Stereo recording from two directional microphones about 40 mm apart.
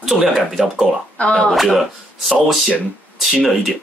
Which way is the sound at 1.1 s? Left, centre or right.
Left.